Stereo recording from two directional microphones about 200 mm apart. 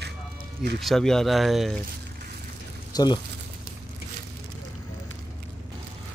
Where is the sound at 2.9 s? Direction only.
20° left (ahead or behind).